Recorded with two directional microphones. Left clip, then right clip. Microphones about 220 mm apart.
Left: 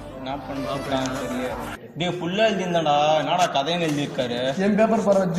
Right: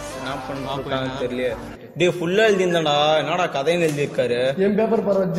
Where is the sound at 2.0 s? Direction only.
45° right (ahead or behind).